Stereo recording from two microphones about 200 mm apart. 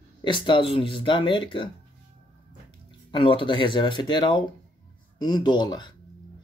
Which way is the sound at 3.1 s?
25° left (ahead or behind).